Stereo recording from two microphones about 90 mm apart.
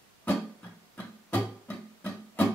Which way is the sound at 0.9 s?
15° left (ahead or behind).